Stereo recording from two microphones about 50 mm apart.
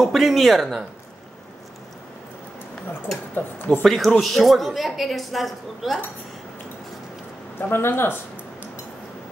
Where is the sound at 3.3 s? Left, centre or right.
Left.